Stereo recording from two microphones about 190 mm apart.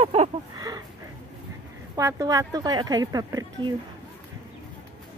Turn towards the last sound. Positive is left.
turn(degrees=-20)  # may be behind; listen again after turning